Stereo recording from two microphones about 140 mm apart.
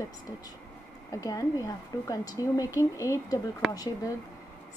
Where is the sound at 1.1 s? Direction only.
25° left (ahead or behind).